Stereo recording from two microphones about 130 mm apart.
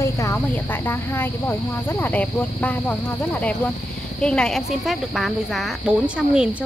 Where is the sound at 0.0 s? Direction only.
20° left (ahead or behind).